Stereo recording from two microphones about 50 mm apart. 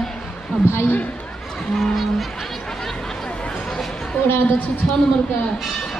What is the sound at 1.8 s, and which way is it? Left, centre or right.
Speech, centre.